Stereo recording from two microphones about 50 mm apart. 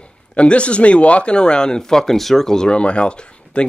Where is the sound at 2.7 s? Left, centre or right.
Left.